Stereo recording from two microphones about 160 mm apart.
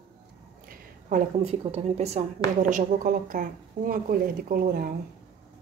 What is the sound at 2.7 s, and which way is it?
A woman's voice, 55° right (ahead or behind).